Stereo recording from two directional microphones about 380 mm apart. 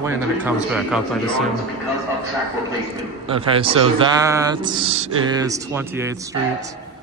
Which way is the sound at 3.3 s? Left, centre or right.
Centre.